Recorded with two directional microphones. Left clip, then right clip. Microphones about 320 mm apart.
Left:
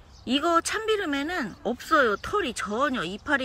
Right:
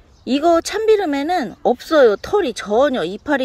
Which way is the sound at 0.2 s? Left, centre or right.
Centre.